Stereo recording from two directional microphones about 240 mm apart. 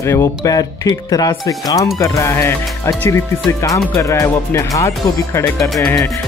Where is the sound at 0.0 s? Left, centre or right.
Centre.